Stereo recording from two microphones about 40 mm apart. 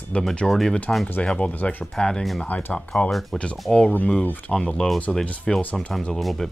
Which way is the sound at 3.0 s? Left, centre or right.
Left.